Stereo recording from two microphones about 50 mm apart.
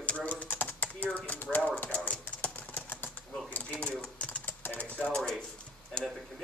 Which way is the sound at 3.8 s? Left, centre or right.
Left.